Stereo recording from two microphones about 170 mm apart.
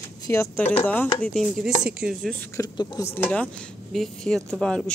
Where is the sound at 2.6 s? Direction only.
20° left (ahead or behind).